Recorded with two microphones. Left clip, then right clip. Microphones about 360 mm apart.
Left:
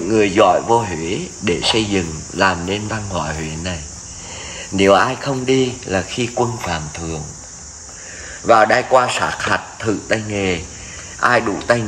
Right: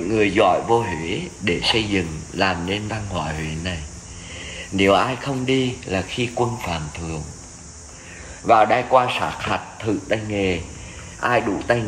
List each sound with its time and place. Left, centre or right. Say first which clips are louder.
0.1 s speech: left 4 dB; centre
8.5 s speech: left 3 dB; left